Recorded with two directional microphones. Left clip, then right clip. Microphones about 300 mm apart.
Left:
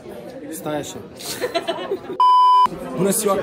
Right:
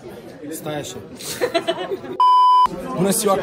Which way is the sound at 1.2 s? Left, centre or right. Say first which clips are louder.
Right 2 dB; centre.